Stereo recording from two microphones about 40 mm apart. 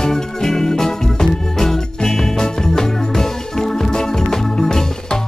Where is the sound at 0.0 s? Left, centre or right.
Centre.